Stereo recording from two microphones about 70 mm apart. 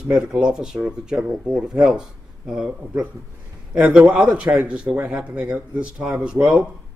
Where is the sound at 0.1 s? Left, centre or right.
Right.